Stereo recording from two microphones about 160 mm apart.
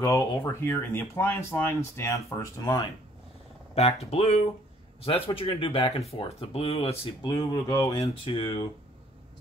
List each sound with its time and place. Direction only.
0.0 s speech: 15° left (ahead or behind)
3.7 s speech: 40° left (ahead or behind)
7.3 s speech: 25° left (ahead or behind)